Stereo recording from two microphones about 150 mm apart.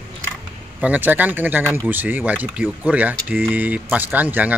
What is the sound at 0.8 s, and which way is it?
Speech, 10° right (ahead or behind).